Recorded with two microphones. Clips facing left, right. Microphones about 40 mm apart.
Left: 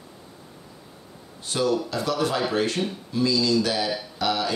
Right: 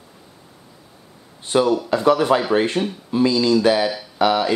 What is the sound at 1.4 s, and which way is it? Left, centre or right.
Speech, right.